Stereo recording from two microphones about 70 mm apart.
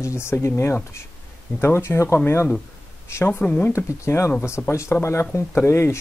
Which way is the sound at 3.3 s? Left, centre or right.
Left.